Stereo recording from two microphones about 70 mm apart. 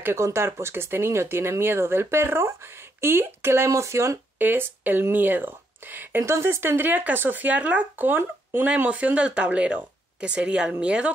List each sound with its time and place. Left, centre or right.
0.0 s speech: right
4.4 s speech: right
6.2 s speech: right; by 11.1 s centre